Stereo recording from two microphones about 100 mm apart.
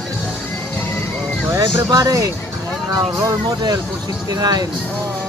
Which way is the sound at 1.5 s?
35° right (ahead or behind).